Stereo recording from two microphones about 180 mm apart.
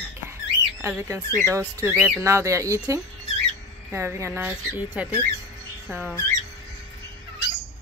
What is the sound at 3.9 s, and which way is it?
Speech, 15° right (ahead or behind).